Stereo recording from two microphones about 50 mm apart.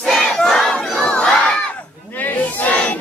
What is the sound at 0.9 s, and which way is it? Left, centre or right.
Crowd, centre.